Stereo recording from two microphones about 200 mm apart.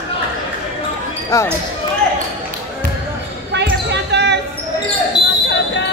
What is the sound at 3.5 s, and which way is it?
Basketball bounce, 60° right (ahead or behind).